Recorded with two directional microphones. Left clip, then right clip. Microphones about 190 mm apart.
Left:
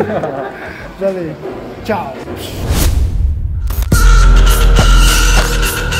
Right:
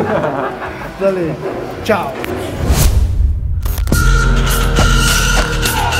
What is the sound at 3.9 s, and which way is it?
Music, centre (ahead or behind).